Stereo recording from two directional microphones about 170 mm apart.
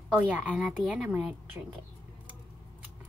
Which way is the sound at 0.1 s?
10° right (ahead or behind).